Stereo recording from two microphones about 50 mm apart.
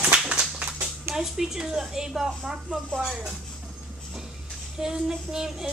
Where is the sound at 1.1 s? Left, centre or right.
Centre.